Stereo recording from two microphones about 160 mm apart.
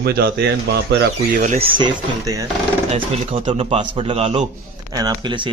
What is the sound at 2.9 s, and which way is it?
Speech, 40° right (ahead or behind).